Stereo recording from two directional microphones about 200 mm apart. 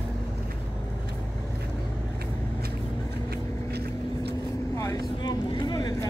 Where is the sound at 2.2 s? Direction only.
50° right (ahead or behind).